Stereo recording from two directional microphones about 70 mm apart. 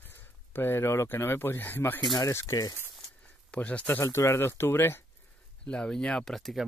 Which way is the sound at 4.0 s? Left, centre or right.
Left.